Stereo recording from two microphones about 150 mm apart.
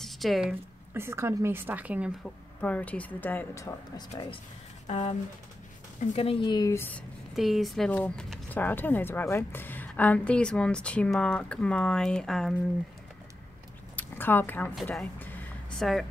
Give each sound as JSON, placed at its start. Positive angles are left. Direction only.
{"t": 0.0, "sound": "speech", "side_deg": 0}
{"t": 0.9, "sound": "a woman's voice", "side_deg": -15}
{"t": 2.2, "sound": "speech", "side_deg": 10}
{"t": 4.8, "sound": "speech", "side_deg": 45}
{"t": 6.1, "sound": "speech", "side_deg": 40}
{"t": 6.8, "sound": "speech", "side_deg": 10}
{"t": 7.3, "sound": "speech", "side_deg": 0}
{"t": 13.9, "sound": "a sound", "side_deg": 15}
{"t": 14.9, "sound": "speech", "side_deg": 10}
{"t": 15.8, "sound": "speech", "side_deg": 0}